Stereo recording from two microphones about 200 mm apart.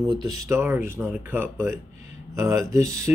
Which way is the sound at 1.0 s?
10° right (ahead or behind).